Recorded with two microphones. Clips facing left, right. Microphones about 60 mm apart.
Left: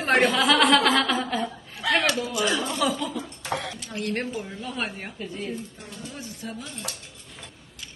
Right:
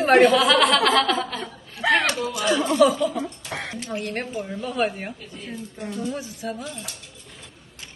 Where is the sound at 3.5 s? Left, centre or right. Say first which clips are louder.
Left 1 dB; right.